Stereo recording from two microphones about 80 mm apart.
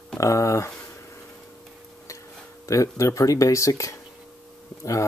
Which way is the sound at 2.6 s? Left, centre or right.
Left.